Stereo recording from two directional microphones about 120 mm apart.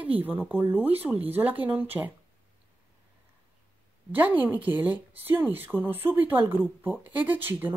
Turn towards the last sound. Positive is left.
turn(degrees=-15)  # may be behind; listen again after turning